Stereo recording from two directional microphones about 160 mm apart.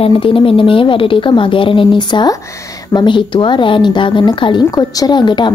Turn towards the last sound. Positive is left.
turn(degrees=30)  # may be behind; listen again after turning